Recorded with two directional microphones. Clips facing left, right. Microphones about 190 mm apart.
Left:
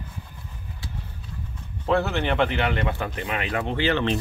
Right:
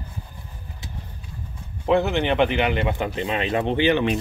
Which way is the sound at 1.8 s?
15° right (ahead or behind).